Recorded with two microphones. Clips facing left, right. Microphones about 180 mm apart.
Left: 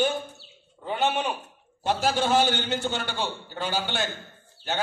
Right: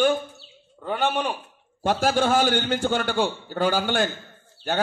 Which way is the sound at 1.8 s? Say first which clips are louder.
Right 3 dB; 50° right (ahead or behind).